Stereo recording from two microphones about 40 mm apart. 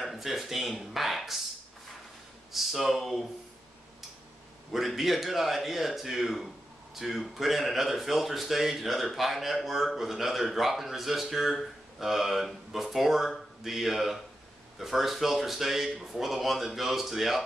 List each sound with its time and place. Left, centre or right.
0.0 s speech: centre
2.5 s speech: centre
4.7 s speech: centre